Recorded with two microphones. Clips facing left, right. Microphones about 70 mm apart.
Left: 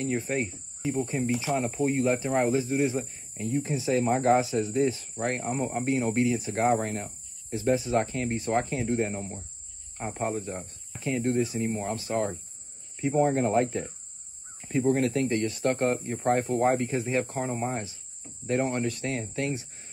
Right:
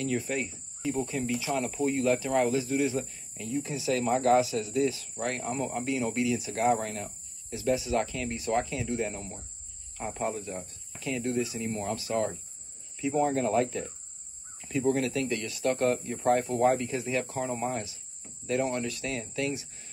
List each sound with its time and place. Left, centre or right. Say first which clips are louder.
0.0 s speech: left 2 dB; left